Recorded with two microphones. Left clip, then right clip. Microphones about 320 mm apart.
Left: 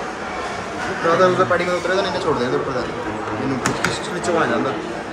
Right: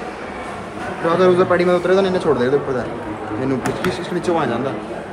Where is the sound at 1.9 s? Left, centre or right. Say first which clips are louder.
Right 3 dB; right.